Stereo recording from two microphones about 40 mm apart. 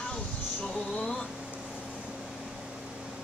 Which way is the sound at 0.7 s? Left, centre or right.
Left.